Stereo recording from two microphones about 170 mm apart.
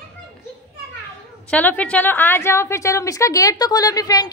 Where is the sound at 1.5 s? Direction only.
10° left (ahead or behind).